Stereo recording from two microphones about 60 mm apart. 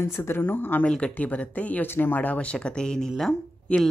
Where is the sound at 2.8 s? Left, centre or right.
Centre.